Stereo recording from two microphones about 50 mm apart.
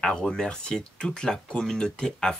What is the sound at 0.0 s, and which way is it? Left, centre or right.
Speech, centre.